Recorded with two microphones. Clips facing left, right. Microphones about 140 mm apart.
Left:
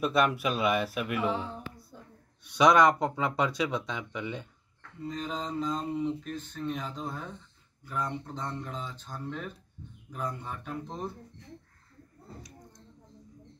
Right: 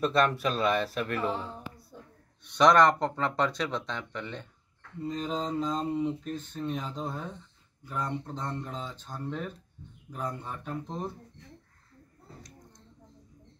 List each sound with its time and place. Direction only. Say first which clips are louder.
0.0 s speech: right 1 dB; 10° left (ahead or behind)
5.0 s speech: right 2 dB; centre (ahead or behind)
5.3 s mantra: right 3 dB; 35° right (ahead or behind)
5.7 s speech: right 1 dB; centre (ahead or behind)